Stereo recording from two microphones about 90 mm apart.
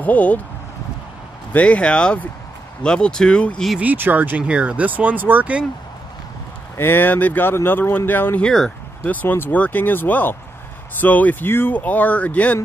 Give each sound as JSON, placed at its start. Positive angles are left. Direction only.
{"t": 0.0, "sound": "speech", "side_deg": 15}
{"t": 1.5, "sound": "speech", "side_deg": 15}
{"t": 3.8, "sound": "speech", "side_deg": -20}
{"t": 6.8, "sound": "speech", "side_deg": 25}
{"t": 8.5, "sound": "speech", "side_deg": 5}
{"t": 9.0, "sound": "speech", "side_deg": 20}